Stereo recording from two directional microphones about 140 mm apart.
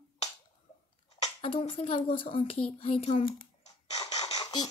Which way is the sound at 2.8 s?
45° left (ahead or behind).